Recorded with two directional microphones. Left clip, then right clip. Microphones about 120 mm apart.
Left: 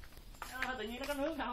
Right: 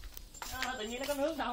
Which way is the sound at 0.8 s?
10° right (ahead or behind).